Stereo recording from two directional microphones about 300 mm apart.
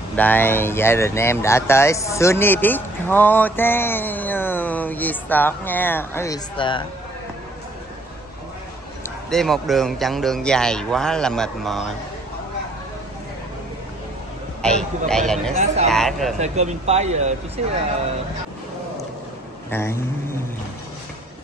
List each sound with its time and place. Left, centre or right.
0.1 s speech: centre
9.0 s speech: centre
14.6 s speech: centre
16.3 s speech: right
19.7 s speech: centre